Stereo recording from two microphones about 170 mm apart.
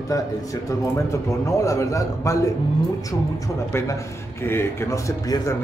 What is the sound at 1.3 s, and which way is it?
Speech, 20° left (ahead or behind).